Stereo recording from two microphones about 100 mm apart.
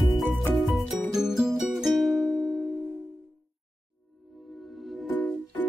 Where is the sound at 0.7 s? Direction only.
Centre (ahead or behind).